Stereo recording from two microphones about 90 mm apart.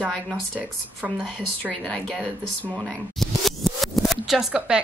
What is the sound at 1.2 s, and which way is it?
Speech, 10° left (ahead or behind).